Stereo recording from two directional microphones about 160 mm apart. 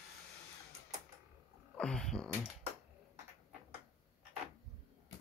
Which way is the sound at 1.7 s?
5° left (ahead or behind).